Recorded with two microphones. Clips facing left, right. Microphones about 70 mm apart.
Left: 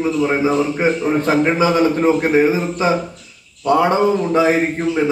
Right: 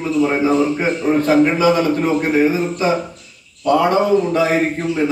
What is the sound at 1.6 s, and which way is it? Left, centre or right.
Speech, left.